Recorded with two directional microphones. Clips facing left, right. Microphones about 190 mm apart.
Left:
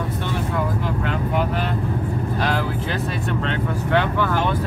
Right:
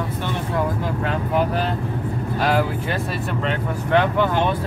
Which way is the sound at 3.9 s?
20° right (ahead or behind).